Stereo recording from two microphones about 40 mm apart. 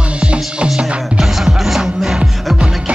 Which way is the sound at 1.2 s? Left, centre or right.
Centre.